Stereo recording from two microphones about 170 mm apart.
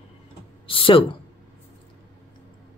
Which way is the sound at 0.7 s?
30° left (ahead or behind).